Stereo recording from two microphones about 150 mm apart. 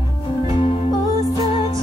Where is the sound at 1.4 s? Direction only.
40° left (ahead or behind).